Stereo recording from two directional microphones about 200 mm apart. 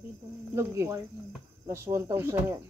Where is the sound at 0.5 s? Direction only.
15° right (ahead or behind).